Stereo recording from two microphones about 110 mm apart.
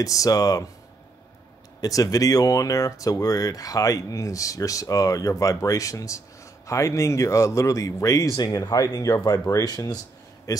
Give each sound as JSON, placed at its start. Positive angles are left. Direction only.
{"t": 0.0, "sound": "speech", "side_deg": 30}
{"t": 1.8, "sound": "speech", "side_deg": 35}